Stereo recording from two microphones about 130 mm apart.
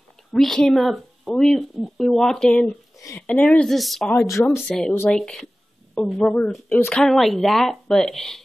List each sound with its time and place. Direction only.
0.3 s speech: 5° left (ahead or behind)
4.3 s speech: 25° left (ahead or behind)
4.6 s speech: 5° left (ahead or behind)